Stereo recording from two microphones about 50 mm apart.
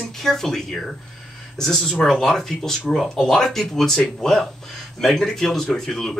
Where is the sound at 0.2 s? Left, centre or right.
Centre.